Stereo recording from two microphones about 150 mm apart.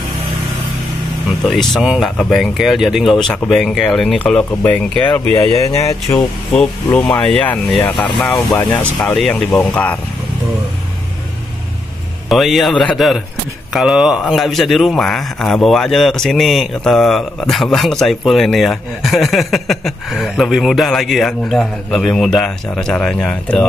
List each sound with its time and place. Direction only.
1.5 s speech: centre (ahead or behind); by 6.2 s 20° left (ahead or behind)
6.5 s speech: 5° left (ahead or behind)
12.3 s speech: centre (ahead or behind)